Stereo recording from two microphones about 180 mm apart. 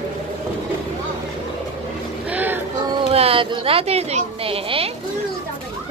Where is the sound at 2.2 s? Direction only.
10° right (ahead or behind).